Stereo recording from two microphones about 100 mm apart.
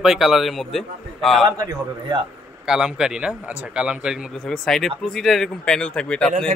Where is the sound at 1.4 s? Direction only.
45° right (ahead or behind).